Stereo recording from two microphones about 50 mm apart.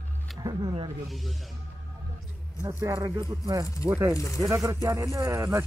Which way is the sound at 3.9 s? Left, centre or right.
Right.